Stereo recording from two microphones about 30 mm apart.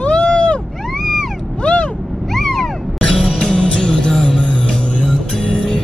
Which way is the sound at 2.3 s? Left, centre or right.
Centre.